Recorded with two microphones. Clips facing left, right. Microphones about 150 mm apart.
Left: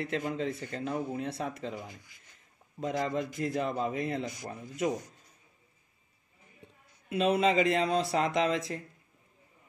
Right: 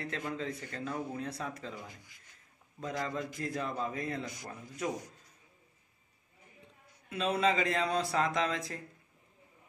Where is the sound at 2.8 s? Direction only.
25° left (ahead or behind).